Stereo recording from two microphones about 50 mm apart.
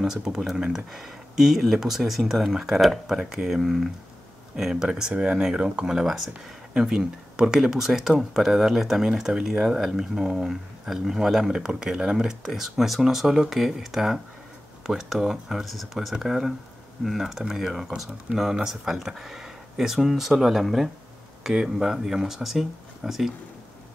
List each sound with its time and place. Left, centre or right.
0.0 s speech: centre
5.1 s speech: right; by 23.3 s centre